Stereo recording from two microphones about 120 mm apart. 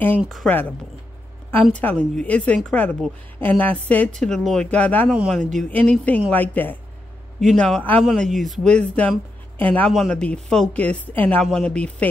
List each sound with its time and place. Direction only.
0.2 s speech: centre (ahead or behind)
0.5 s a woman's voice: 15° left (ahead or behind)
5.1 s a man's voice: 5° right (ahead or behind)
5.7 s a woman's voice: 10° left (ahead or behind)
7.3 s a woman's voice: centre (ahead or behind)
9.8 s a woman's voice: 5° left (ahead or behind)